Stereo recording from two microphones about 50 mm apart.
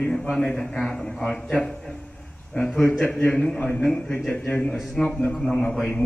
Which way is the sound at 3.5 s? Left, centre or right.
Left.